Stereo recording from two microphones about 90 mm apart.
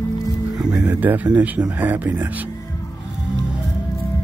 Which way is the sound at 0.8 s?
20° right (ahead or behind).